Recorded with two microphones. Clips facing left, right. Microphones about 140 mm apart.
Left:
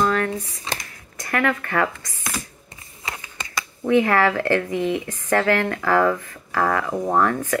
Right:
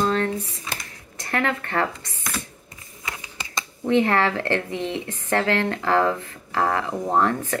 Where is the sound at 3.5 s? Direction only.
25° right (ahead or behind).